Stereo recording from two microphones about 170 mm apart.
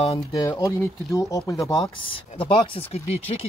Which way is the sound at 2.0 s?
30° left (ahead or behind).